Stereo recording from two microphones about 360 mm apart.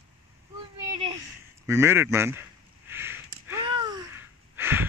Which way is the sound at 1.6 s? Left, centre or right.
Centre.